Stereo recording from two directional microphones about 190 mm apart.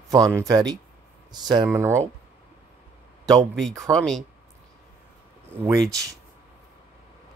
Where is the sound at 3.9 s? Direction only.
Centre (ahead or behind).